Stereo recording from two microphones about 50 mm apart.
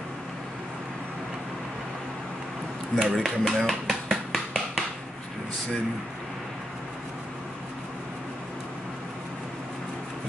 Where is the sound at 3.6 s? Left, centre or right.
Centre.